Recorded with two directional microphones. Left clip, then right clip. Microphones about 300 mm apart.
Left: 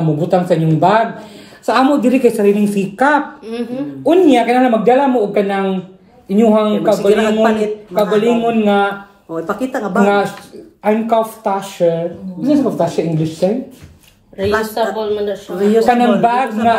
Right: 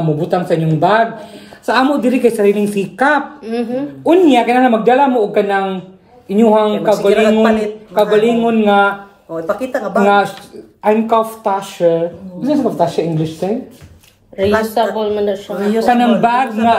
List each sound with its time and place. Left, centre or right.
0.2 s a man's voice: centre
3.4 s a man's voice: right
4.0 s a man's voice: centre
14.7 s a man's voice: right
15.8 s a man's voice: centre